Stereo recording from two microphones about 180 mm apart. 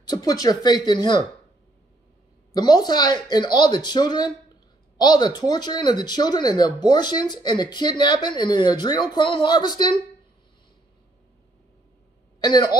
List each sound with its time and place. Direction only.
0.0 s speech: 20° left (ahead or behind)
2.5 s speech: 20° left (ahead or behind)
12.4 s a woman's voice: 20° left (ahead or behind)